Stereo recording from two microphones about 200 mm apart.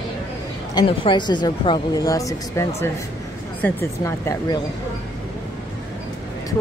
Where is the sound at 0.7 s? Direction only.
25° left (ahead or behind).